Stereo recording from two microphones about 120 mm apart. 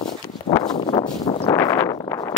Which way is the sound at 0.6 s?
40° left (ahead or behind).